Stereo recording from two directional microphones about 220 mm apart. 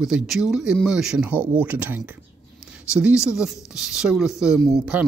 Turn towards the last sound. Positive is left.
turn(degrees=-5)  # may be behind; listen again after turning